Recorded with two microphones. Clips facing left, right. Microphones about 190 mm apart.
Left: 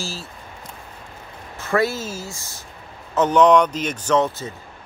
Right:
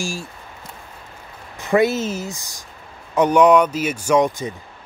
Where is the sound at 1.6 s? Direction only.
15° right (ahead or behind).